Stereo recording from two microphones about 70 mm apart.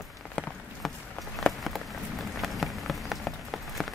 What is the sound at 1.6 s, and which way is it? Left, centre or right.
Rain on surface, centre.